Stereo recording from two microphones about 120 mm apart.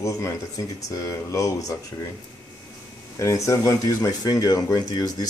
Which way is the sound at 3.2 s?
25° left (ahead or behind).